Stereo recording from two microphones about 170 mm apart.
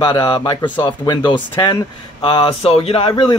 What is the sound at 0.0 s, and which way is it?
Speech, 25° left (ahead or behind).